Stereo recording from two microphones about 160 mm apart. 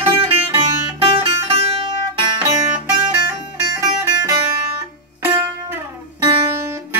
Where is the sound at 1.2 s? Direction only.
35° right (ahead or behind).